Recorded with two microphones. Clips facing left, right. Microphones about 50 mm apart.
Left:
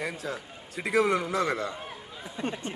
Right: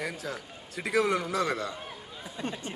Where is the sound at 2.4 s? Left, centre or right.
Left.